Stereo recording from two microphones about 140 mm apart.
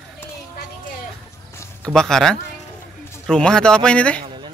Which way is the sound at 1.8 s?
5° left (ahead or behind).